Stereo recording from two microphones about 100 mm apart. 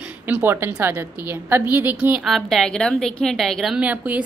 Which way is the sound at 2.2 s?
Centre (ahead or behind).